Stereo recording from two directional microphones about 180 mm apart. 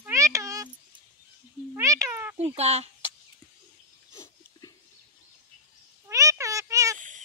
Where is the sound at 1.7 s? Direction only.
20° right (ahead or behind).